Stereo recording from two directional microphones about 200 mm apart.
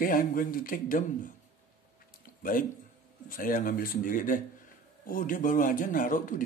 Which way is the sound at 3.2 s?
45° left (ahead or behind).